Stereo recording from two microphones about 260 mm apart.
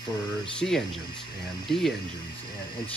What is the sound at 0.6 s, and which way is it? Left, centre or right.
Speech, left.